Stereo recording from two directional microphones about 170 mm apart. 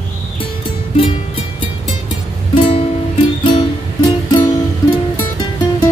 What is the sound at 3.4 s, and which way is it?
Music, 25° left (ahead or behind).